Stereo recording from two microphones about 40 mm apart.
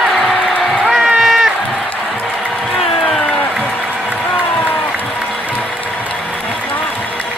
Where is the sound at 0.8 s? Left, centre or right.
Centre.